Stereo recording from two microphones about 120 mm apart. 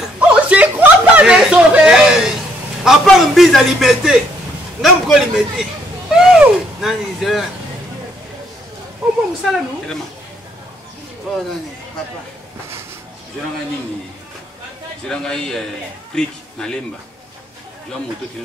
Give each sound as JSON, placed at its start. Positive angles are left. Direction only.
{"t": 0.2, "sound": "a sound", "side_deg": -10}
{"t": 2.8, "sound": "a man's voice", "side_deg": -5}
{"t": 9.4, "sound": "a man's voice", "side_deg": 0}
{"t": 11.3, "sound": "a man's voice", "side_deg": 0}
{"t": 15.0, "sound": "a man's voice", "side_deg": 5}